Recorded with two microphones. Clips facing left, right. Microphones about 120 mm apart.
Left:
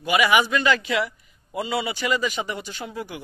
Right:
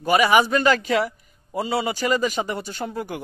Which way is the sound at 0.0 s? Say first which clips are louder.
Right 3 dB; 40° right (ahead or behind).